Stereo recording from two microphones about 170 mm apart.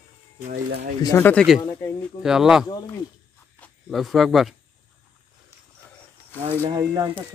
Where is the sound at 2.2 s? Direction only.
5° right (ahead or behind).